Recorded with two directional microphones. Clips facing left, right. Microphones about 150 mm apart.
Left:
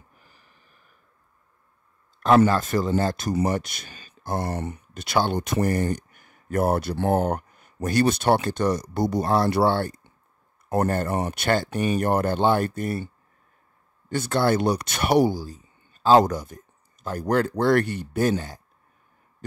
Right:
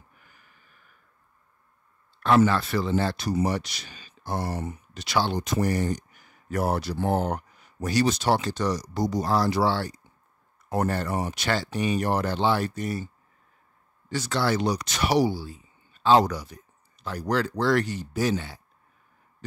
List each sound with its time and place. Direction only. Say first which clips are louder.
0.2 s a sound: left 1 dB; 35° left (ahead or behind)
2.2 s speech: left 3 dB; 45° left (ahead or behind)
4.6 s speech: left 2 dB; 70° left (ahead or behind); by 18.6 s 45° left (ahead or behind)